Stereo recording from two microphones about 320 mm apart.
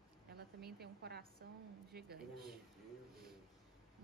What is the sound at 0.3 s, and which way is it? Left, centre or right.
A woman's voice, right.